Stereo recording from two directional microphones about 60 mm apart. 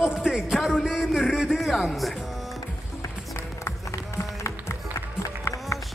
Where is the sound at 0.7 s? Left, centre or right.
Centre.